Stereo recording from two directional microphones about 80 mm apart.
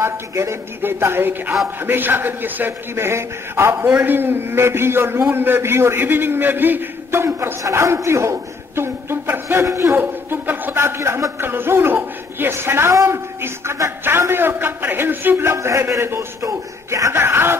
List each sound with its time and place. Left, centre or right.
0.0 s a man's voice: right